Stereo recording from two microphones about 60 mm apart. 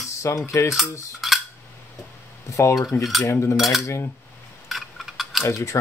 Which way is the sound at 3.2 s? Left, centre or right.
Left.